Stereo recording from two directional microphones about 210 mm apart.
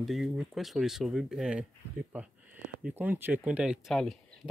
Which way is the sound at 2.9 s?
10° right (ahead or behind).